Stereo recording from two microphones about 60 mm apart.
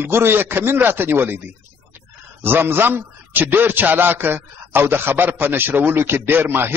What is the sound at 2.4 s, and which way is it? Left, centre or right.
A man's voice, right.